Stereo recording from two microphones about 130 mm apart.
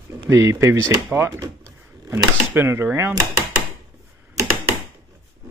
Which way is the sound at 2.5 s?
15° right (ahead or behind).